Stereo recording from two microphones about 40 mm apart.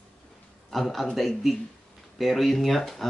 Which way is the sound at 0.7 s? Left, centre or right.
Centre.